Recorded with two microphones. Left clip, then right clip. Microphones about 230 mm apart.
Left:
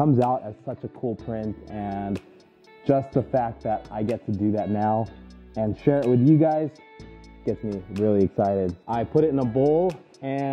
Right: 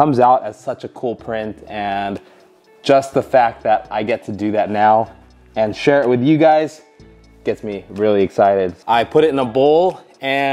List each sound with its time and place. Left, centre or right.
0.0 s a man's voice: centre
3.1 s speech: centre
8.0 s speech: centre